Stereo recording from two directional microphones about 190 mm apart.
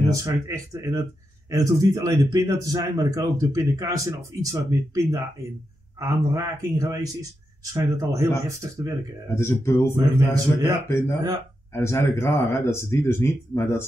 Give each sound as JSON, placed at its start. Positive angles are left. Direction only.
{"t": 0.1, "sound": "a man's voice", "side_deg": -15}
{"t": 9.3, "sound": "speech", "side_deg": 15}